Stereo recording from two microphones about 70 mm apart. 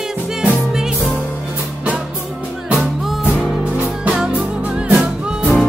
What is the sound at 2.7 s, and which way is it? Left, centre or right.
Music, centre.